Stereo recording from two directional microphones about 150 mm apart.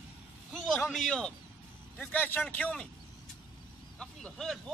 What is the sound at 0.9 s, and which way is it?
Speech, 5° left (ahead or behind).